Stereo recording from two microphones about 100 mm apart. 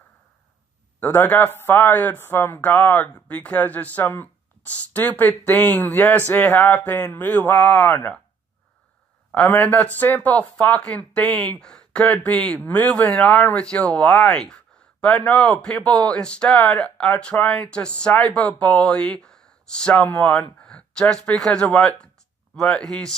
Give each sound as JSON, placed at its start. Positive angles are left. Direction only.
{"t": 0.9, "sound": "speech", "side_deg": 20}
{"t": 9.3, "sound": "speech", "side_deg": 15}
{"t": 20.6, "sound": "a sound", "side_deg": 10}
{"t": 21.4, "sound": "speech", "side_deg": 10}